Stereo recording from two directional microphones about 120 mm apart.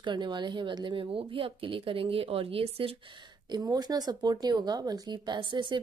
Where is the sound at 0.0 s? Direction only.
40° right (ahead or behind).